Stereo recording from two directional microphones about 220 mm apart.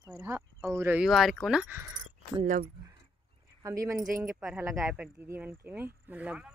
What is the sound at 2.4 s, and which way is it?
Speech, 35° right (ahead or behind).